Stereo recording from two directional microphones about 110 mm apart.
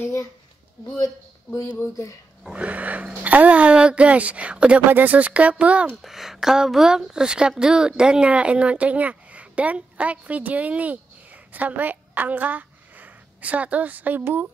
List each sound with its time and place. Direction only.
0.0 s speech: 25° left (ahead or behind)
2.4 s speech: 10° right (ahead or behind)